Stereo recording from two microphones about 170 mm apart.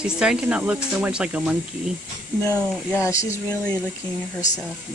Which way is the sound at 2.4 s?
15° left (ahead or behind).